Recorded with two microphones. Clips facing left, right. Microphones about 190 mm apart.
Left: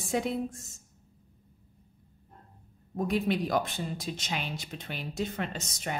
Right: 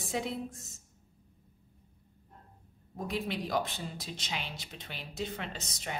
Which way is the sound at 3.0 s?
50° left (ahead or behind).